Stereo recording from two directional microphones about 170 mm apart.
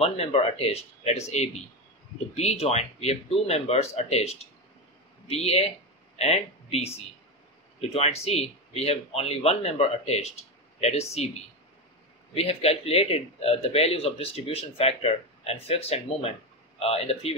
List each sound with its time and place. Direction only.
0.0 s a man's voice: 35° left (ahead or behind)
7.9 s a man's voice: 35° left (ahead or behind)
12.4 s a man's voice: 35° left (ahead or behind)